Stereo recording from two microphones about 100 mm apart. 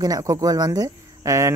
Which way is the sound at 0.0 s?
35° right (ahead or behind).